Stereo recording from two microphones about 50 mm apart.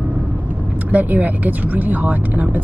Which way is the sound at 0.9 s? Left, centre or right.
Right.